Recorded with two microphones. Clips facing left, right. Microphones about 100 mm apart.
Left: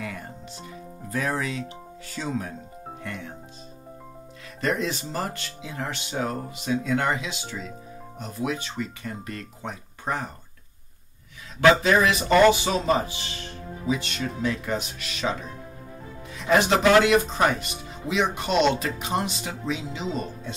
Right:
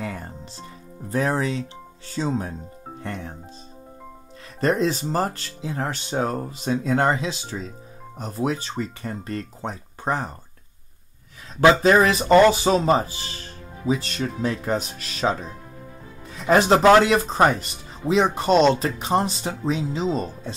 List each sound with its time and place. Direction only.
0.0 s music: 35° right (ahead or behind)
2.0 s speech: 30° right (ahead or behind)
4.6 s speech: 35° right (ahead or behind)
11.8 s speech: 35° right (ahead or behind)
16.3 s speech: 35° right (ahead or behind)